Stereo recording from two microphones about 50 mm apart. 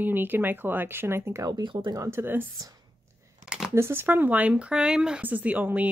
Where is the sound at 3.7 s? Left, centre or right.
Right.